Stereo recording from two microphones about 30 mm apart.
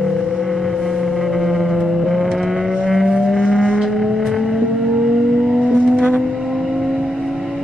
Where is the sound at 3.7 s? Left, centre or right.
Centre.